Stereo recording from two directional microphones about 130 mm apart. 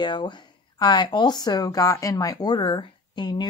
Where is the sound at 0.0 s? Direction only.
35° left (ahead or behind).